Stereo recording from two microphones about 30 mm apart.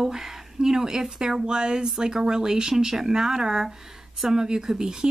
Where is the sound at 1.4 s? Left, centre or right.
Right.